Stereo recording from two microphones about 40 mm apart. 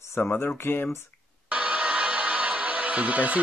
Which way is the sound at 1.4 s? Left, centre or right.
Right.